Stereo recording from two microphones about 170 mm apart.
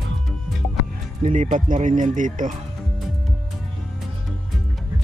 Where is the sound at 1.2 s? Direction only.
50° right (ahead or behind).